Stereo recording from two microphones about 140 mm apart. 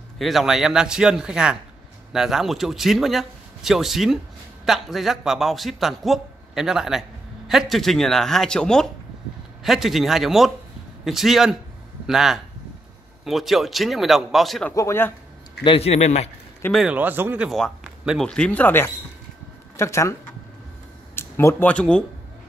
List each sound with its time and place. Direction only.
0.2 s a man's voice: centre (ahead or behind)
14.8 s speech: 15° left (ahead or behind)
15.6 s a man's voice: 45° left (ahead or behind)
16.7 s speech: 10° right (ahead or behind)
17.5 s a man's voice: 5° left (ahead or behind)